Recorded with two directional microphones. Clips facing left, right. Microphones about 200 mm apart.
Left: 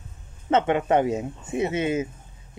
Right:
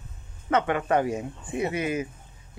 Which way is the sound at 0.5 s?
25° left (ahead or behind).